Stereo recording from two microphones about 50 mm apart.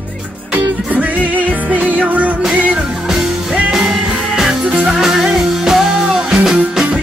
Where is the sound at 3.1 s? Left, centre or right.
Centre.